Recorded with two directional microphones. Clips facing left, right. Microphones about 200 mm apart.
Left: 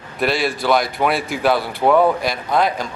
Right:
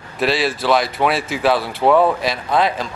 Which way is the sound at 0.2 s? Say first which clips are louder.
Right 1 dB; centre (ahead or behind).